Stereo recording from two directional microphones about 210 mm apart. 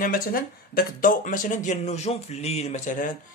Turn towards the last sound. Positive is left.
turn(degrees=35)  # may be behind; listen again after turning